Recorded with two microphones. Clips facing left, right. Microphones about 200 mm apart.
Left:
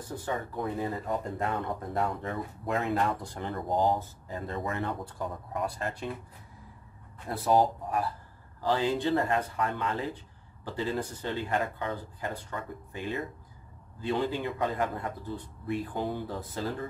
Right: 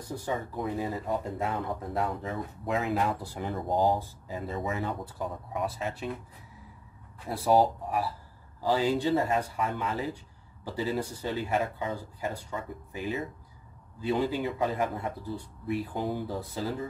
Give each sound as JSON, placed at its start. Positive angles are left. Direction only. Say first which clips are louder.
{"t": 0.1, "sound": "speech", "louder": "right 1 dB", "side_deg": -10}
{"t": 7.2, "sound": "speech", "louder": "right 1 dB", "side_deg": -10}